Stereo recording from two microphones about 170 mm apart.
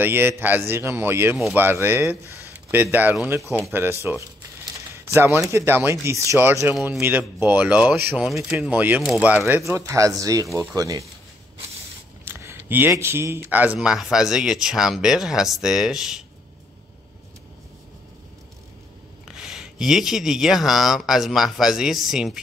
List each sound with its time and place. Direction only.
0.0 s speech: 10° right (ahead or behind)
4.9 s speech: 15° right (ahead or behind)
12.3 s speech: 15° right (ahead or behind)
19.2 s speech: centre (ahead or behind)